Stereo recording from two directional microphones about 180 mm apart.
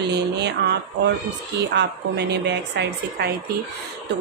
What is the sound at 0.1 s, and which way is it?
A woman's voice, 70° right (ahead or behind).